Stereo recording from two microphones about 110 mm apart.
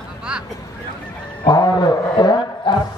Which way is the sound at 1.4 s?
40° left (ahead or behind).